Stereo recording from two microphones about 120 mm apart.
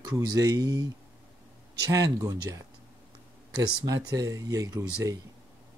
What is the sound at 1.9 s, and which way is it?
Speech, 30° right (ahead or behind).